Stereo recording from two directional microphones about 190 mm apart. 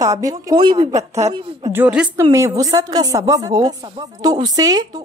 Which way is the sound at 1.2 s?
35° right (ahead or behind).